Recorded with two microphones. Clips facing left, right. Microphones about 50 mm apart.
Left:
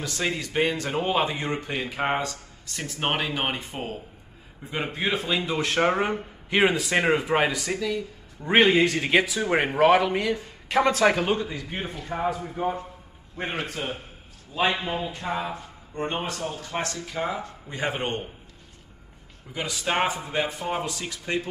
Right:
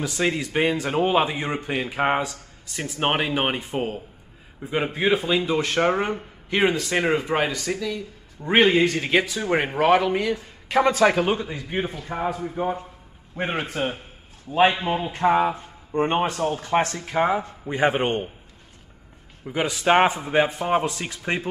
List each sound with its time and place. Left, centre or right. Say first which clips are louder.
0.0 s speech: right 4 dB; centre
13.4 s speech: right 5 dB; centre
15.0 s speech: right 10 dB; right
17.4 s speech: right 8 dB; right
19.4 s speech: right 7 dB; right